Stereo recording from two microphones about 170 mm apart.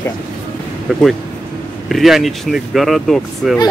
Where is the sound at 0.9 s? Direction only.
Centre (ahead or behind).